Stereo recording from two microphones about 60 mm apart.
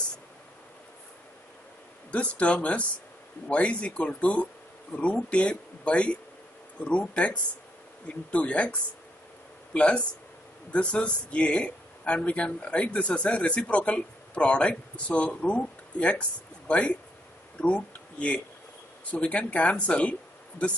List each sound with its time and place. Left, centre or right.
2.0 s speech: left
9.8 s speech: centre